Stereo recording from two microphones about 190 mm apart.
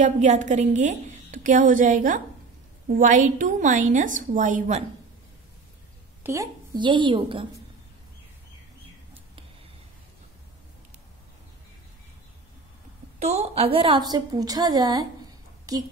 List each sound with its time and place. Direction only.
0.0 s a woman's voice: 40° right (ahead or behind)
6.2 s a woman's voice: 15° right (ahead or behind)
13.2 s a woman's voice: 35° right (ahead or behind); by 15.8 s 20° right (ahead or behind)